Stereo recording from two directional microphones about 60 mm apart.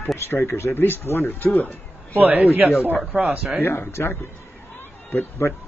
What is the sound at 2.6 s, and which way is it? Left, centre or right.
Speech, right.